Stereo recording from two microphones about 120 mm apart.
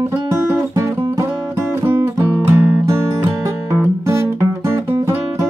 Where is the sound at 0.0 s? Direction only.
25° right (ahead or behind).